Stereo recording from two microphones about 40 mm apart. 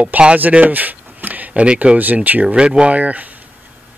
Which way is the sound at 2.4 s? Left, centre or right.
Right.